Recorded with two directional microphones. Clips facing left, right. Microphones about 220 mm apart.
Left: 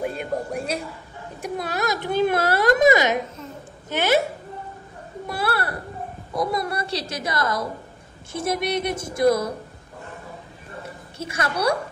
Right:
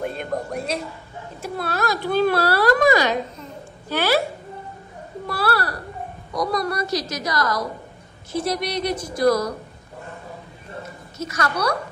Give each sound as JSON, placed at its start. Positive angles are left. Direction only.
{"t": 0.0, "sound": "a man's voice", "side_deg": 10}
{"t": 5.3, "sound": "a sound", "side_deg": 20}
{"t": 6.3, "sound": "a child's voice", "side_deg": 25}
{"t": 8.6, "sound": "a child's voice", "side_deg": 25}
{"t": 11.2, "sound": "a child's voice", "side_deg": 25}